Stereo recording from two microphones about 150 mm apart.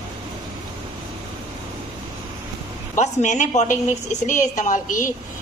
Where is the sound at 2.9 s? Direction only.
55° left (ahead or behind).